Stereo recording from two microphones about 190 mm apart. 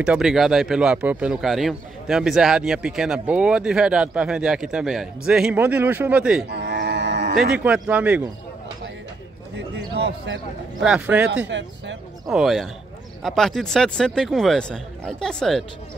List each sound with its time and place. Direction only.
0.0 s speech: 5° right (ahead or behind)
6.5 s livestock: 60° right (ahead or behind)
7.3 s speech: 5° right (ahead or behind)
9.6 s a sound: 65° right (ahead or behind)
10.8 s speech: 5° right (ahead or behind)
11.4 s speech: 70° right (ahead or behind)
12.3 s speech: centre (ahead or behind)